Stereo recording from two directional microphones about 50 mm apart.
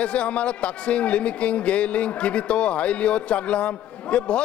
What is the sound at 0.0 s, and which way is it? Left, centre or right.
Speech, left.